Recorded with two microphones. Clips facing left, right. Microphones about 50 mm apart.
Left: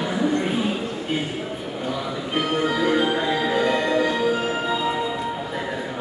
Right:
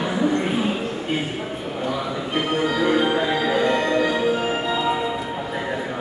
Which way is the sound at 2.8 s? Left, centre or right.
Centre.